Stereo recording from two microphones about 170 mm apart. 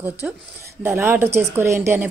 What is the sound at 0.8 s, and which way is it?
A woman's voice, 10° right (ahead or behind).